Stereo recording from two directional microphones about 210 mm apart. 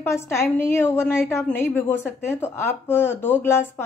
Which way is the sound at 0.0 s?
15° left (ahead or behind).